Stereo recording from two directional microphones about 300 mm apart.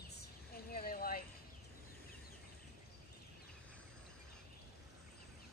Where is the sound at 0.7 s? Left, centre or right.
Left.